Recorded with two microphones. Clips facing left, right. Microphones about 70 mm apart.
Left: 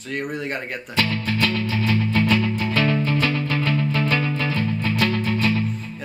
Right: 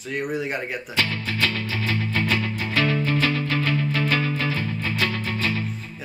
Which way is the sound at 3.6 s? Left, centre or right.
Left.